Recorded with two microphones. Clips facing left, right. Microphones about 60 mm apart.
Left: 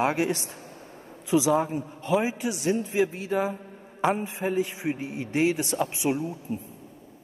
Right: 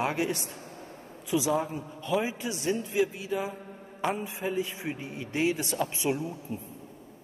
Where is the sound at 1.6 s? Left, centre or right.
Left.